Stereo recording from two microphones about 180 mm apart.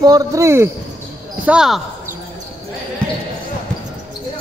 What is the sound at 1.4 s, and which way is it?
Speech, 5° right (ahead or behind).